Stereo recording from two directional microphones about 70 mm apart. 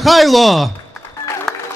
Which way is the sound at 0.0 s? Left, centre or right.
Centre.